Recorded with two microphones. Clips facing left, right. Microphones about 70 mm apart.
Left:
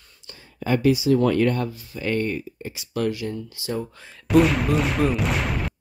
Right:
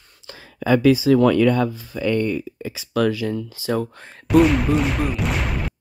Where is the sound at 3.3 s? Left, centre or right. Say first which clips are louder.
Right 5 dB; right.